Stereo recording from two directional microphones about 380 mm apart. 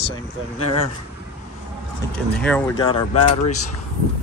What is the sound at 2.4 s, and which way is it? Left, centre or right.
Speech, centre.